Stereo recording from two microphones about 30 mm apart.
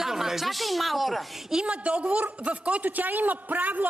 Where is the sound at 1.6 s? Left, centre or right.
Right.